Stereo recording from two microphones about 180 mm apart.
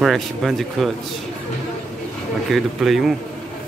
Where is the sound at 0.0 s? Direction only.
Centre (ahead or behind).